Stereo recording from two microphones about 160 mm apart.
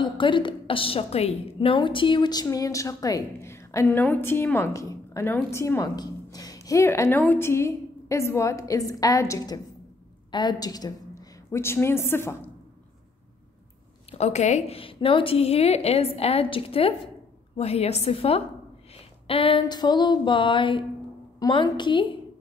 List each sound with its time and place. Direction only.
0.0 s a woman's voice: 30° left (ahead or behind); by 12.4 s 15° left (ahead or behind)
14.1 s a woman's voice: 45° left (ahead or behind)
18.9 s a sound: 35° left (ahead or behind)
19.6 s a woman's voice: 25° left (ahead or behind)